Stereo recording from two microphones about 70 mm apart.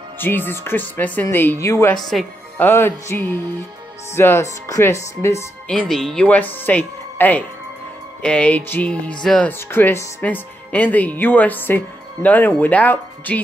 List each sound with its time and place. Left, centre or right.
0.2 s speech: left
1.6 s speech: left
2.0 s speech: centre
2.5 s music: left
5.7 s speech: centre
6.2 s speech: left
9.2 s speech: centre
9.5 s speech: left